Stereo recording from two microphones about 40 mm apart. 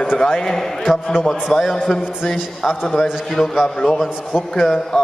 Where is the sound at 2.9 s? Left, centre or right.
Centre.